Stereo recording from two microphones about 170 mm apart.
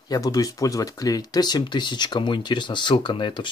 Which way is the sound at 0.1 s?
20° left (ahead or behind).